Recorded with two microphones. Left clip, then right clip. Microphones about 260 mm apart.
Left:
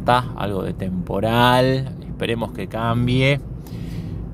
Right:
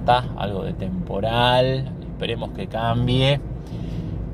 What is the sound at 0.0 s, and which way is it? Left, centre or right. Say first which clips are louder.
A man's voice: left 1 dB; left.